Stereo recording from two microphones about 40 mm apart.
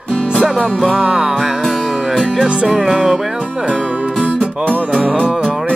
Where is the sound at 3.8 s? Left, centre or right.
Right.